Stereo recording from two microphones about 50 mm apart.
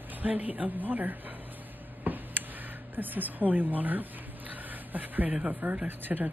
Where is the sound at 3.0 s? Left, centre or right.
Right.